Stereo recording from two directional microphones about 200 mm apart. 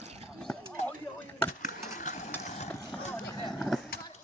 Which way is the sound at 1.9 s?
40° left (ahead or behind).